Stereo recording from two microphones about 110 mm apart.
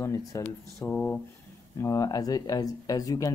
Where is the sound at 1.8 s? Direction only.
30° left (ahead or behind).